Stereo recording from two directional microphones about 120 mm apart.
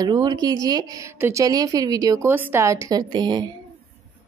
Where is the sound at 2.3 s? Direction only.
15° right (ahead or behind); by 3.5 s 40° right (ahead or behind).